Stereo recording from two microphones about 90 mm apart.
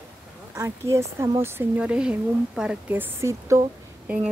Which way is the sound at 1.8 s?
10° right (ahead or behind).